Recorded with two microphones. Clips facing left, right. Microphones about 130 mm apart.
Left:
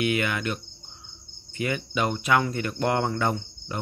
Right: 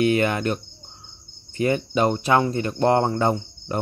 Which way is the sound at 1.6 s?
35° right (ahead or behind).